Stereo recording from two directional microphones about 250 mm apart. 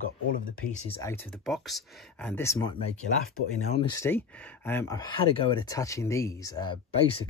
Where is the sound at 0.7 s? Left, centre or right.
Left.